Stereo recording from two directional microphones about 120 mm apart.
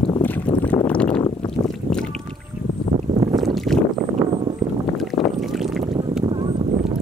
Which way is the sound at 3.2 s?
40° right (ahead or behind).